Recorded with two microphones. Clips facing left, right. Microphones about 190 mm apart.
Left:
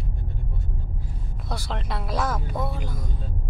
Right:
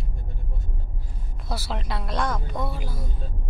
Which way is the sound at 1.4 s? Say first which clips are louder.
Right 1 dB; 5° right (ahead or behind).